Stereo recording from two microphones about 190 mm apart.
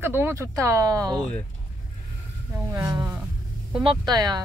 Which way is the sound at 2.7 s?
20° right (ahead or behind).